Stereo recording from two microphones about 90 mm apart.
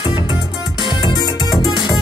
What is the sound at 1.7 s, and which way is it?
Music, 55° left (ahead or behind).